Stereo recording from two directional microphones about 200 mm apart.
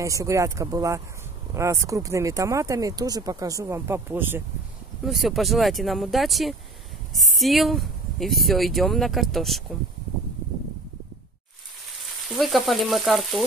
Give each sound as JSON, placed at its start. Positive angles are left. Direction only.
{"t": 0.0, "sound": "speech", "side_deg": -15}
{"t": 12.0, "sound": "frying", "side_deg": 0}